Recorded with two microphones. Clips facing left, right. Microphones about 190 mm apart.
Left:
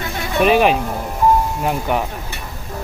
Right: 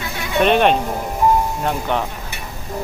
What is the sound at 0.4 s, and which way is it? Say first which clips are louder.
Speech: left 1 dB; 5° left (ahead or behind).